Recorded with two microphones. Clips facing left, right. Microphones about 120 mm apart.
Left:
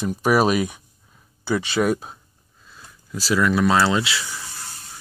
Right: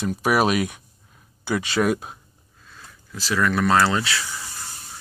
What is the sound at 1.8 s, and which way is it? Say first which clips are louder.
Speech: left 1 dB; centre (ahead or behind).